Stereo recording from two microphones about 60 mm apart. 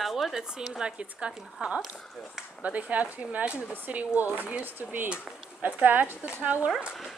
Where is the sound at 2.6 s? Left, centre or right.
Right.